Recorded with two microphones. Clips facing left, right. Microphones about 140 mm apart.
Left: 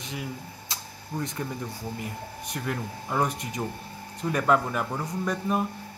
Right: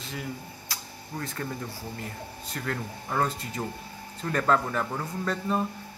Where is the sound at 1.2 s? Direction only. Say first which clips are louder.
Left 1 dB; 20° left (ahead or behind).